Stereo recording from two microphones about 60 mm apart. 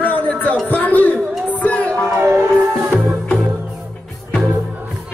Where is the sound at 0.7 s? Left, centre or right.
Left.